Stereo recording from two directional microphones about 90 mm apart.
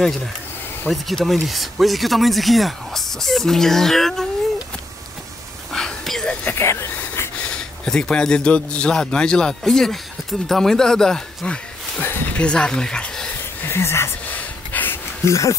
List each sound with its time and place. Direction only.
0.8 s speech: centre (ahead or behind)
5.7 s a sound: 5° left (ahead or behind)
6.4 s a sound: 30° left (ahead or behind)
7.0 s speech: 15° left (ahead or behind)
13.6 s speech: 25° left (ahead or behind)
14.3 s gasp: 20° left (ahead or behind)
15.2 s speech: 35° left (ahead or behind)